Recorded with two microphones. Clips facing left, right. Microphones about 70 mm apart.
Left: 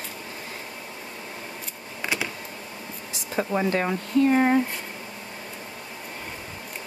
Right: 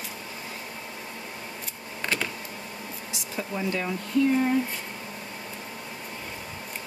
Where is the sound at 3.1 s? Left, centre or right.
Left.